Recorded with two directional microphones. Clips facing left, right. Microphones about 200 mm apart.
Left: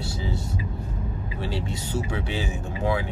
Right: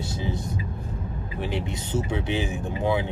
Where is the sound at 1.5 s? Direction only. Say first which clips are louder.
Right 1 dB; 20° right (ahead or behind).